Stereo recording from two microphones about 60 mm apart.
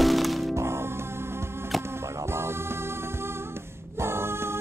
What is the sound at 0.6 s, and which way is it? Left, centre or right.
Music, right.